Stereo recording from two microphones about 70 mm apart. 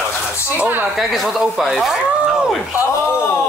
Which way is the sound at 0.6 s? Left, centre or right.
Right.